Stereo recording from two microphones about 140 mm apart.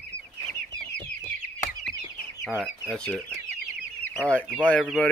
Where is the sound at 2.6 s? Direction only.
5° left (ahead or behind).